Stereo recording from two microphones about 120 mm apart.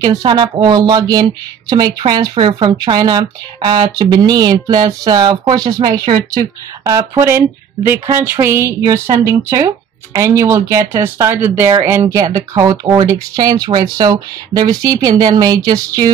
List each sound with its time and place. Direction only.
0.0 s speech: 35° right (ahead or behind)